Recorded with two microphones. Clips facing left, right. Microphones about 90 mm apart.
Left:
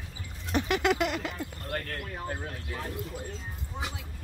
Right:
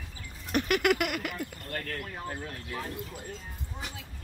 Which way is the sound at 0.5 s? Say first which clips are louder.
Even; 20° left (ahead or behind).